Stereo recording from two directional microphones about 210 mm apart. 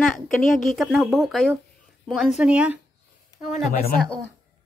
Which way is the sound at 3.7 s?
45° left (ahead or behind).